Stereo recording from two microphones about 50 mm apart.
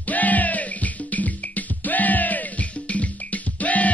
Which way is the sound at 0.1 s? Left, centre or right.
Left.